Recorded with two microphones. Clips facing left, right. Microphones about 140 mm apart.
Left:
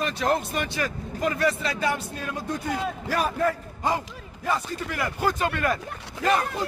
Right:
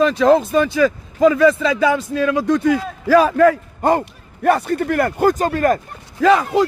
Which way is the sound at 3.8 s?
55° right (ahead or behind).